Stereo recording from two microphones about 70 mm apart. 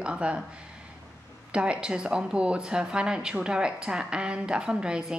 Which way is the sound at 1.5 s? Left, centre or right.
Centre.